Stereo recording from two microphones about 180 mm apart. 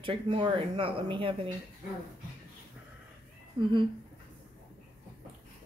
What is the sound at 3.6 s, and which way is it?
Speech, 30° right (ahead or behind).